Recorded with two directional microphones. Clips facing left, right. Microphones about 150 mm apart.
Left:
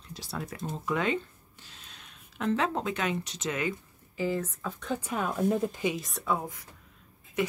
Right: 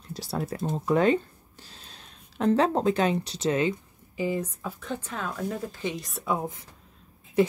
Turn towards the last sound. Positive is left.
turn(degrees=-30)  # may be behind; listen again after turning